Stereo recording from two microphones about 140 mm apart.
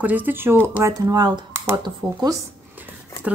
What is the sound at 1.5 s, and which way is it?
Computer keyboard, 15° right (ahead or behind).